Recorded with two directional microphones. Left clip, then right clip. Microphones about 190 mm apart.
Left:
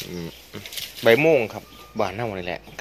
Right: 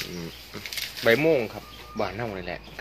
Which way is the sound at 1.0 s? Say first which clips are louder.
Left 4 dB; 30° left (ahead or behind).